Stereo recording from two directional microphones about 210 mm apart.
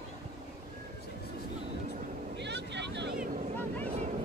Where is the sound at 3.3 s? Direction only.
35° right (ahead or behind).